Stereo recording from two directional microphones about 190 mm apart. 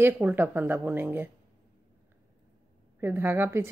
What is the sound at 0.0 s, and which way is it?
A woman's voice, 10° right (ahead or behind).